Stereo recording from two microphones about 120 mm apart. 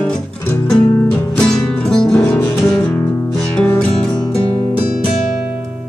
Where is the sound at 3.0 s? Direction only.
20° left (ahead or behind).